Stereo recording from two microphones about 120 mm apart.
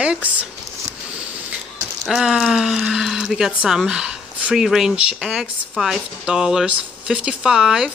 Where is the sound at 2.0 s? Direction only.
Centre (ahead or behind).